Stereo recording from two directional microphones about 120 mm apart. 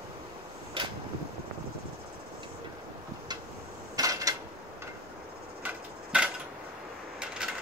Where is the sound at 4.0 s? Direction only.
30° right (ahead or behind).